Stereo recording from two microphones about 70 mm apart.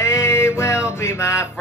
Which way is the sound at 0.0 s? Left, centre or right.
Left.